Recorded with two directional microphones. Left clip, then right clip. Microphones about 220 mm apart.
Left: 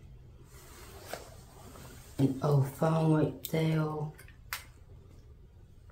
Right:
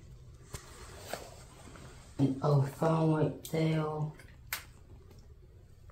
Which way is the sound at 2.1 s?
45° left (ahead or behind).